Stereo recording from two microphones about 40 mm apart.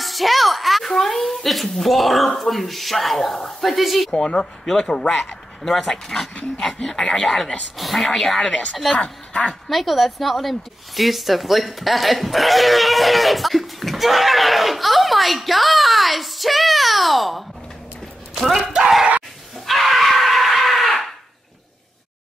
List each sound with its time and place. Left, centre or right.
0.0 s a woman's voice: centre
4.1 s speech: centre
5.1 s speech: centre
8.9 s a woman's voice: left
9.7 s speech: centre
18.3 s a sound: centre
19.6 s screaming: centre